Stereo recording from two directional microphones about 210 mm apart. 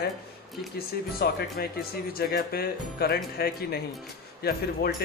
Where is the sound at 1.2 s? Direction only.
50° left (ahead or behind).